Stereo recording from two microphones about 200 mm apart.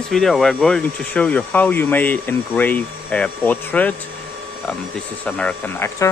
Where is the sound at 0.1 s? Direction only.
Centre (ahead or behind).